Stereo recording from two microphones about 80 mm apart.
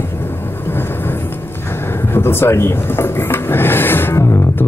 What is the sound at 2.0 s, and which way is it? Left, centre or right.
Drawer open or close, left.